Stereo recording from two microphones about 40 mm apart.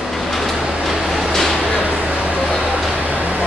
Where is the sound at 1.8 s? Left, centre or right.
Right.